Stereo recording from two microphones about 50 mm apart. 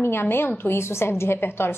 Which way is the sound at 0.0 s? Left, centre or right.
Left.